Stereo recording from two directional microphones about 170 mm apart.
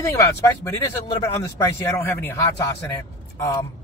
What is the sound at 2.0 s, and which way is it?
Speech, 15° left (ahead or behind).